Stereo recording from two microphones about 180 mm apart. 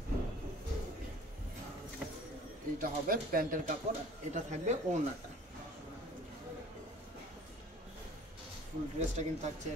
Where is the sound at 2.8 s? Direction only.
50° right (ahead or behind).